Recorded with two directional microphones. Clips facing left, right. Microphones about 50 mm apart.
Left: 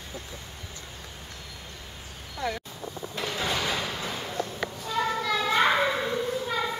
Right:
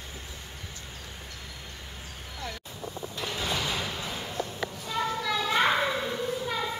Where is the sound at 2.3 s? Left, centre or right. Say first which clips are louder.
Left 8 dB; left.